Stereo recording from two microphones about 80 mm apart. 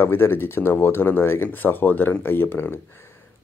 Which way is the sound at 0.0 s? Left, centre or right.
Left.